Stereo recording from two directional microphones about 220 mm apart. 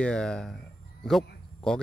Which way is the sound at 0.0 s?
5° left (ahead or behind).